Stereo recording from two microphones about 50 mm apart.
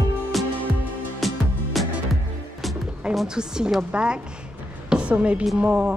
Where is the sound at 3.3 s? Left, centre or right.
Centre.